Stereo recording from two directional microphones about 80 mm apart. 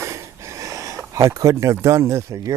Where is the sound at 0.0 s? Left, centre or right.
Right.